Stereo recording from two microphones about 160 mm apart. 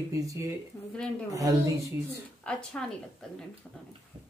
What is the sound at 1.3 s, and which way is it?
Speech, 20° right (ahead or behind).